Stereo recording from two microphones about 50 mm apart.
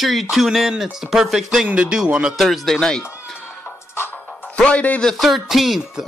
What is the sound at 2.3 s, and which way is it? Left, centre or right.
Speech, centre.